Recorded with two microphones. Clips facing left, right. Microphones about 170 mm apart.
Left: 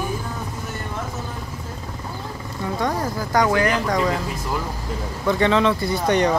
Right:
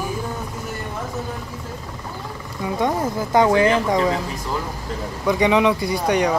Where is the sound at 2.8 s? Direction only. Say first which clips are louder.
Right 3 dB; 20° right (ahead or behind).